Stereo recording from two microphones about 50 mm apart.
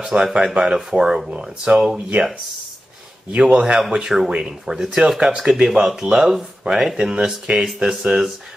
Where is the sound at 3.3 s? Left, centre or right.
Centre.